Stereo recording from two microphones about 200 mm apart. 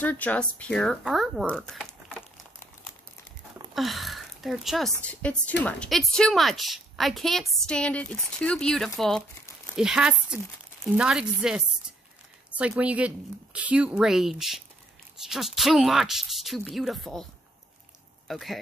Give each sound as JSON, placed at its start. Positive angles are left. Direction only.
{"t": 0.0, "sound": "a woman's voice", "side_deg": 10}
{"t": 3.7, "sound": "a woman's voice", "side_deg": 0}
{"t": 18.3, "sound": "a woman's voice", "side_deg": 0}